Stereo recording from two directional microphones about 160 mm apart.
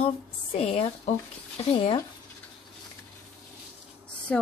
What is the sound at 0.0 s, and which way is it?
Speech, 40° left (ahead or behind).